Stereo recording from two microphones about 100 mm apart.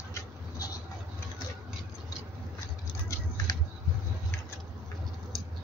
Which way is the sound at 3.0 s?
35° left (ahead or behind).